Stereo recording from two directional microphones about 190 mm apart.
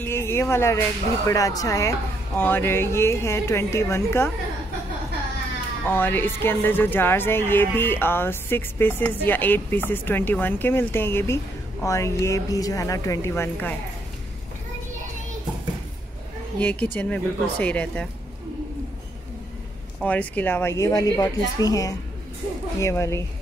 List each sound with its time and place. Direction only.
0.0 s speech: 15° left (ahead or behind)
5.9 s speech: 10° left (ahead or behind)
16.5 s speech: 10° left (ahead or behind)
20.0 s speech: 10° left (ahead or behind)